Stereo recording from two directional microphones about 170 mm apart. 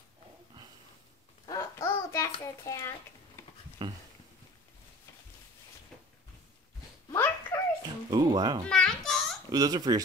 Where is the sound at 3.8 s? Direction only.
25° right (ahead or behind).